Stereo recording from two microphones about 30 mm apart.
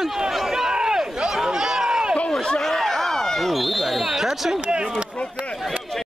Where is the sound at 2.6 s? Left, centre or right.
Centre.